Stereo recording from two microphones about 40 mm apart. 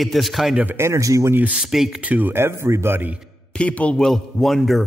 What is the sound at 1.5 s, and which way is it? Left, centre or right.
Speech, centre.